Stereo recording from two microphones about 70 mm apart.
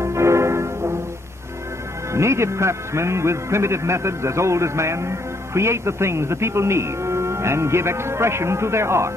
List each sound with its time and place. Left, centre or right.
0.0 s music: right
2.1 s a man's voice: right